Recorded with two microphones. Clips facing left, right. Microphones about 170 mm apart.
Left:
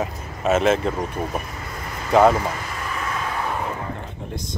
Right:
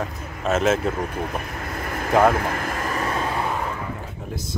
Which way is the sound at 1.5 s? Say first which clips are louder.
Right 4 dB; 55° right (ahead or behind).